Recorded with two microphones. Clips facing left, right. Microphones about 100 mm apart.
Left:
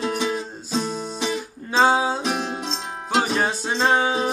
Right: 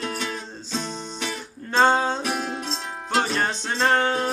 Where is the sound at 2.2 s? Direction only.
20° left (ahead or behind).